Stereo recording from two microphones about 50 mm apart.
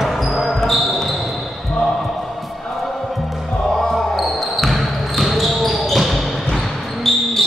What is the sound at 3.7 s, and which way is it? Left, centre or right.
Basketball bounce, centre.